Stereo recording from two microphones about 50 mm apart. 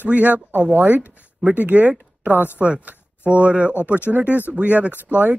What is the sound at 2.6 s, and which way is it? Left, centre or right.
Speech, right.